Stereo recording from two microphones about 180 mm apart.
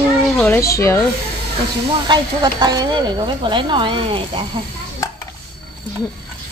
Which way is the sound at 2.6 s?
25° right (ahead or behind).